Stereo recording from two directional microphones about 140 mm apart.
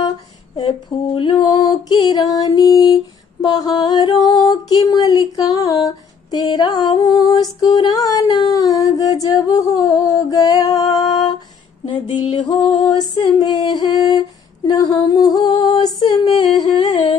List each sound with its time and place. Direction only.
0.6 s female singing: 40° left (ahead or behind)
4.5 s a sound: 30° left (ahead or behind)
11.8 s music: 35° left (ahead or behind)
13.1 s female singing: 30° left (ahead or behind)
15.4 s singing: 35° left (ahead or behind)